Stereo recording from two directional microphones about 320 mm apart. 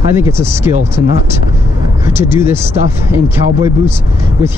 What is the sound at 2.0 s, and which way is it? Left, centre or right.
Speech, centre.